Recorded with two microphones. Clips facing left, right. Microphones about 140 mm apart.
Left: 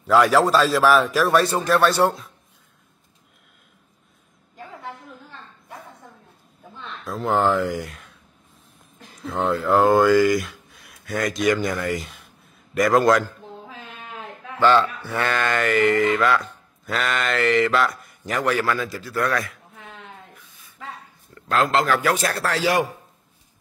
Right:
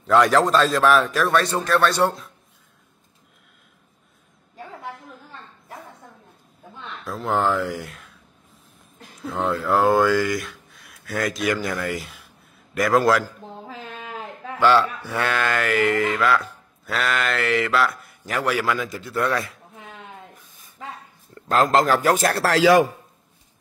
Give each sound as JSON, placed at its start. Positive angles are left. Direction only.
{"t": 0.0, "sound": "speech", "side_deg": 5}
{"t": 6.8, "sound": "speech", "side_deg": 0}
{"t": 9.2, "sound": "speech", "side_deg": 0}
{"t": 14.6, "sound": "speech", "side_deg": -10}
{"t": 20.3, "sound": "a sound", "side_deg": -45}
{"t": 21.4, "sound": "speech", "side_deg": -40}
{"t": 22.4, "sound": "a man's voice", "side_deg": -90}